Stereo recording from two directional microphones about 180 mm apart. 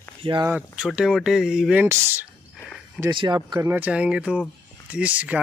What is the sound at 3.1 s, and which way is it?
Speech, 25° right (ahead or behind).